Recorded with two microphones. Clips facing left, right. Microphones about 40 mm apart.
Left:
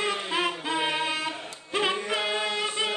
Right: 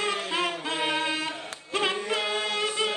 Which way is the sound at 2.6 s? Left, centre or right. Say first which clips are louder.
Right 1 dB; centre.